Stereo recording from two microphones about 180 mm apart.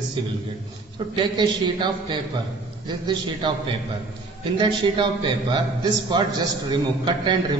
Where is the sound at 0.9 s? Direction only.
25° right (ahead or behind).